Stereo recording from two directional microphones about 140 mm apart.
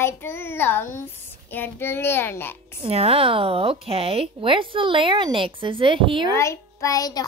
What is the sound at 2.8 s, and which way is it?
Speech, 45° right (ahead or behind).